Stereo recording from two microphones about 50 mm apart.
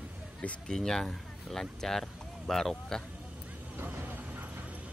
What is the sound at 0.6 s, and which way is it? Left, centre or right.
Speech, centre.